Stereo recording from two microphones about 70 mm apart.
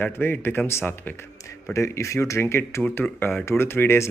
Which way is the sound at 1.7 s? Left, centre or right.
Left.